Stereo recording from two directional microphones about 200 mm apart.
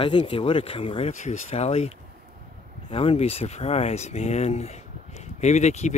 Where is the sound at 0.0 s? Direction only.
25° left (ahead or behind).